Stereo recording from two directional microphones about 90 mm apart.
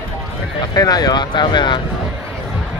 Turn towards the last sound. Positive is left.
turn(degrees=55)  # may be behind; listen again after turning